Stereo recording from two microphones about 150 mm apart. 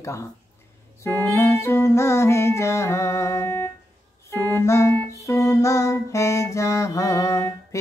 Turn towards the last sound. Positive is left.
turn(degrees=20)  # may be behind; listen again after turning